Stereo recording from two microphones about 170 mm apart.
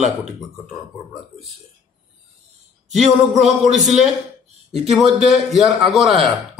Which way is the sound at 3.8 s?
Centre (ahead or behind).